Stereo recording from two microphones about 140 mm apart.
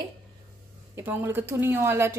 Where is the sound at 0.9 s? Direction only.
15° right (ahead or behind).